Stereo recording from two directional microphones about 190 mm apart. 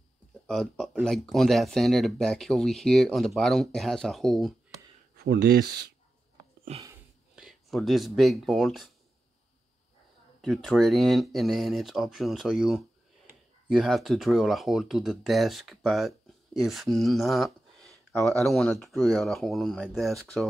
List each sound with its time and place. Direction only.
0.5 s speech: centre (ahead or behind)
5.1 s speech: 60° right (ahead or behind)
6.7 s speech: 35° right (ahead or behind)
7.3 s speech: centre (ahead or behind)
10.4 s speech: centre (ahead or behind)